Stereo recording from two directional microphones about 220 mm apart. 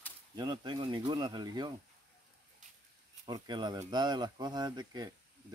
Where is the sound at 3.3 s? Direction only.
20° right (ahead or behind).